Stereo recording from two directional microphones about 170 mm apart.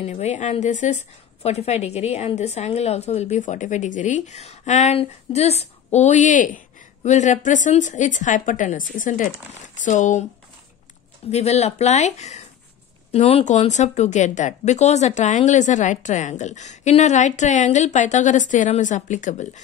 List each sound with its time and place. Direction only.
0.0 s speech: 40° left (ahead or behind)
11.2 s speech: 40° left (ahead or behind)